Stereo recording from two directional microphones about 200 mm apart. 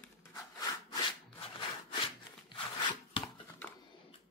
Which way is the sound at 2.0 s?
25° left (ahead or behind).